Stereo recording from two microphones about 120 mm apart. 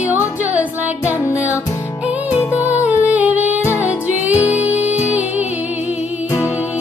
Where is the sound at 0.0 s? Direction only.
15° right (ahead or behind).